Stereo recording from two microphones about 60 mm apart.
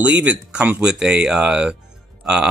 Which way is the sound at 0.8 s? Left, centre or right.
Centre.